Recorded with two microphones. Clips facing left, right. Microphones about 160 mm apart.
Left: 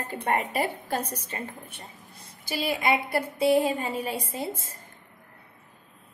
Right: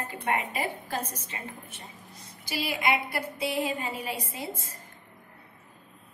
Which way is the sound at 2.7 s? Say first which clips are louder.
Left 3 dB; 30° left (ahead or behind).